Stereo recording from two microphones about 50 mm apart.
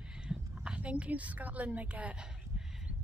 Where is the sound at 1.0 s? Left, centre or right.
Right.